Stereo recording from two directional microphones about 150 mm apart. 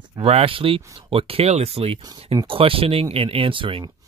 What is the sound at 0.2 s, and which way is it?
Speech, 40° right (ahead or behind).